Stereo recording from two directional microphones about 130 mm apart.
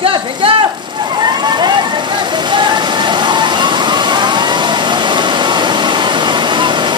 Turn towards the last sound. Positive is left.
turn(degrees=-35)  # may be behind; listen again after turning